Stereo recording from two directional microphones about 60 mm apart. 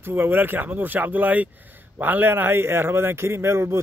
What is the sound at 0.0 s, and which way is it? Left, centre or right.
Speech, right.